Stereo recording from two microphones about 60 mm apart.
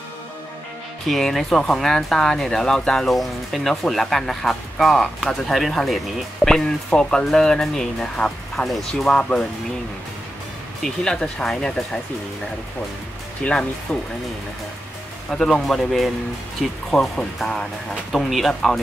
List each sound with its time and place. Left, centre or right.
1.0 s speech: centre
9.1 s speech: centre
10.8 s speech: centre
13.4 s speech: centre
15.3 s speech: centre